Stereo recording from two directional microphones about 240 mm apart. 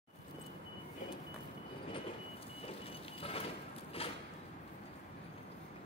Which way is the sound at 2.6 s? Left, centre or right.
Left.